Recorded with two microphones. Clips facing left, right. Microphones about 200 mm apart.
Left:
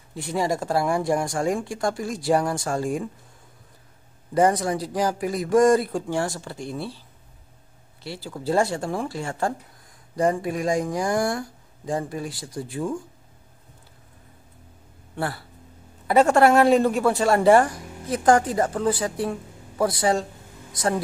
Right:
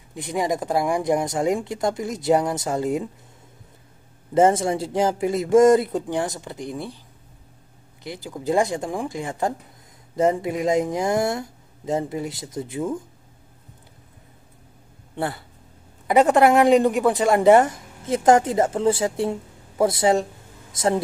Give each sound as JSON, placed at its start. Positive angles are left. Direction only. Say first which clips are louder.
{"t": 0.1, "sound": "speech", "louder": "right 1 dB", "side_deg": -20}
{"t": 4.3, "sound": "speech", "louder": "right 3 dB", "side_deg": -25}
{"t": 8.0, "sound": "speech", "louder": "right 1 dB", "side_deg": -15}
{"t": 15.1, "sound": "speech", "louder": "right 2 dB", "side_deg": -20}